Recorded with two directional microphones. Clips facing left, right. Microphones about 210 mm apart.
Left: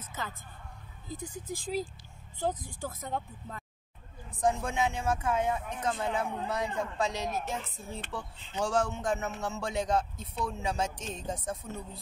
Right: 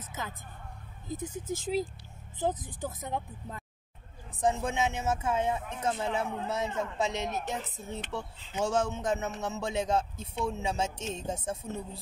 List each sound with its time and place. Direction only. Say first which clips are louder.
0.1 s a man's voice: even; 15° right (ahead or behind)